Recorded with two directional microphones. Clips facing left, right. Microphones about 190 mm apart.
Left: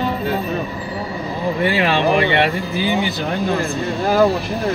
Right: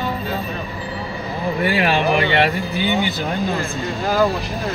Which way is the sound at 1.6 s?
30° left (ahead or behind).